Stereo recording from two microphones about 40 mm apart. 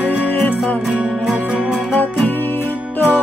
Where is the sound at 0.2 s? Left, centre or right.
Left.